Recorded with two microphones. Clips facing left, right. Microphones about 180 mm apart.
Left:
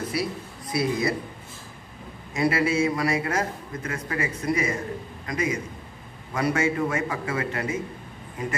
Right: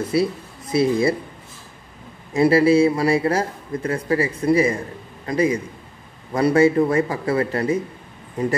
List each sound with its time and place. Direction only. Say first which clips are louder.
0.1 s speech: right 8 dB; 25° right (ahead or behind)
2.3 s a man's voice: right 8 dB; 30° right (ahead or behind)